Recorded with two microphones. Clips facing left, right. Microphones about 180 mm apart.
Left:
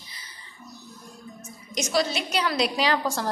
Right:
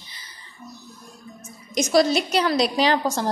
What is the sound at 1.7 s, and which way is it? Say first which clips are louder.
A woman's voice: right 7 dB; 40° right (ahead or behind).